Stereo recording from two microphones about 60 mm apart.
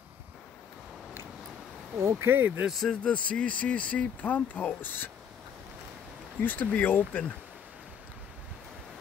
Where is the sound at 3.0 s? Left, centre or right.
Centre.